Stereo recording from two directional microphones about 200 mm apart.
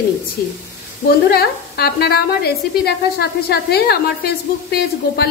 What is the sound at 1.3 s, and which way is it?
Speech, 50° left (ahead or behind).